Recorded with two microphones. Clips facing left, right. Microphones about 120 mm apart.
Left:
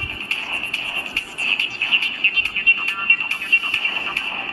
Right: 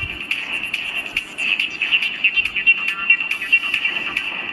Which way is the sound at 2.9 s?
25° left (ahead or behind).